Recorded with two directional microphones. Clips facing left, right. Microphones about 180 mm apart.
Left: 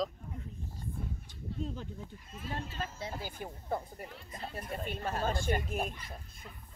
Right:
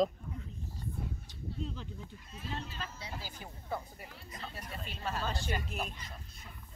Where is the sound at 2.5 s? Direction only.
50° left (ahead or behind).